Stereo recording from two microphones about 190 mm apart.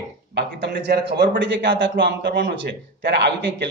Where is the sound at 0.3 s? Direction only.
65° right (ahead or behind).